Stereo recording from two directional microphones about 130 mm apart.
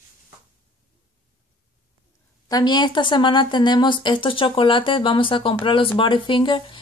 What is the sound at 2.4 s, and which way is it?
A woman's voice, 30° left (ahead or behind).